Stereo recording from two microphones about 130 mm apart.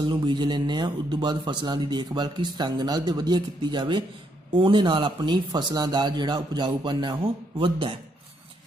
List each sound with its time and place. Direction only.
0.0 s a man's voice: 35° right (ahead or behind)